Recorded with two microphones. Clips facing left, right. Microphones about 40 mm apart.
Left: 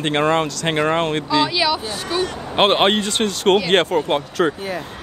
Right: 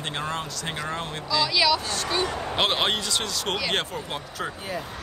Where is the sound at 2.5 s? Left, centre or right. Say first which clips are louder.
Left 10 dB; left.